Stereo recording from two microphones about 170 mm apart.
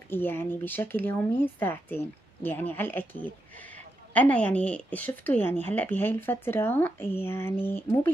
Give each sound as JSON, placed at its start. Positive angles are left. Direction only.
{"t": 0.1, "sound": "a woman's voice", "side_deg": 10}